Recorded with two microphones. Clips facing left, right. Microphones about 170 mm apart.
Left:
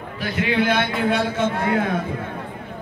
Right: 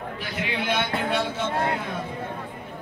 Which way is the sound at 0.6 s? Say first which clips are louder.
Left 6 dB; 75° left (ahead or behind).